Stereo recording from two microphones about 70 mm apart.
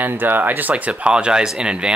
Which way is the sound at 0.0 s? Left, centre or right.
Right.